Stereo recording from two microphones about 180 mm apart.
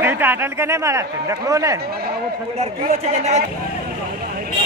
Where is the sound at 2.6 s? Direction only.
40° right (ahead or behind).